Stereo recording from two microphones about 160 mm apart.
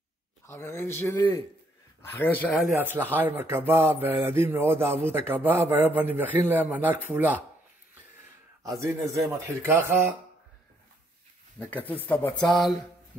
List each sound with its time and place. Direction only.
0.5 s speech: 15° left (ahead or behind)
2.7 s speech: 10° right (ahead or behind)
8.6 s a man's voice: 20° right (ahead or behind)
11.6 s speech: 10° left (ahead or behind)